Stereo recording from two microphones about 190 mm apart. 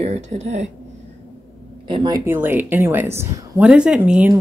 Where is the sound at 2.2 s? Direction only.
10° right (ahead or behind).